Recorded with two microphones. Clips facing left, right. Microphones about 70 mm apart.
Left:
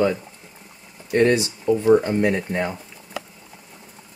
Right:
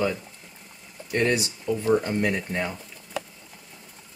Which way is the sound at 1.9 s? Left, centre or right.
Centre.